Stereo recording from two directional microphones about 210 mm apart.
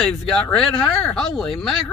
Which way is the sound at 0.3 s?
5° left (ahead or behind).